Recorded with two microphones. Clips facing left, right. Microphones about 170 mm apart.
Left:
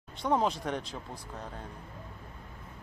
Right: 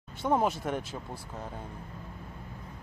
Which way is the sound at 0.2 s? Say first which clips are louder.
Right 1 dB; 5° right (ahead or behind).